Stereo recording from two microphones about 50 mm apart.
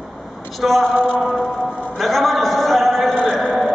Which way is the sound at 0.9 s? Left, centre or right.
Left.